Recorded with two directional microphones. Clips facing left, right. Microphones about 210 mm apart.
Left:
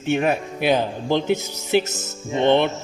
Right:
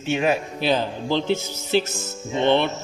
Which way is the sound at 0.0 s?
55° left (ahead or behind).